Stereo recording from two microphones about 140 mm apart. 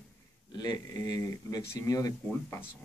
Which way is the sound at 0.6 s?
25° left (ahead or behind).